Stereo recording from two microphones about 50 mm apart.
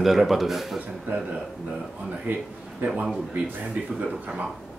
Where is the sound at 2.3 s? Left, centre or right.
Right.